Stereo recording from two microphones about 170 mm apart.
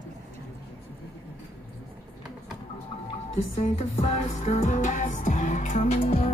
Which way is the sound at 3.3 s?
40° left (ahead or behind).